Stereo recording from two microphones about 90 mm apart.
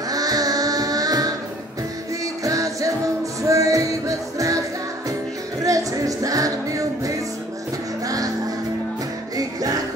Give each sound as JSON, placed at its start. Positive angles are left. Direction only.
{"t": 0.1, "sound": "music", "side_deg": -45}
{"t": 2.4, "sound": "music", "side_deg": -40}
{"t": 5.6, "sound": "music", "side_deg": -40}
{"t": 9.4, "sound": "music", "side_deg": -40}